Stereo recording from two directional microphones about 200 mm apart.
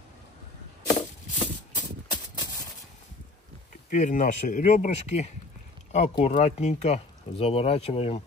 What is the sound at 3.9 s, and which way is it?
Speech, 40° left (ahead or behind).